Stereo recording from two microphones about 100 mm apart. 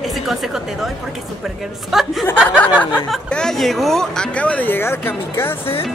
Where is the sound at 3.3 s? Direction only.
5° left (ahead or behind); by 5.5 s 25° left (ahead or behind).